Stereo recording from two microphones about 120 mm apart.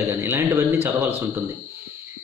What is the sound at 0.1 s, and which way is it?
Speech, 25° right (ahead or behind).